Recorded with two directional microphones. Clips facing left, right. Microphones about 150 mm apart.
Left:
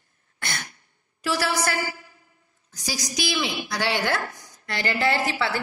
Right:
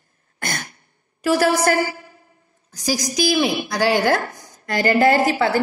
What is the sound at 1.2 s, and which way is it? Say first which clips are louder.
Speech: right 8 dB; 50° right (ahead or behind).